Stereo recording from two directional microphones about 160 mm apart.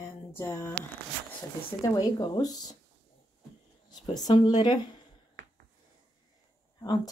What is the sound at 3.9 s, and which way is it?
Speech, 25° left (ahead or behind).